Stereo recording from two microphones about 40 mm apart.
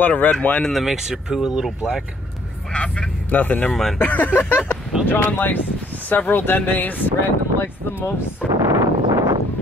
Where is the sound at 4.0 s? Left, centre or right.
Left.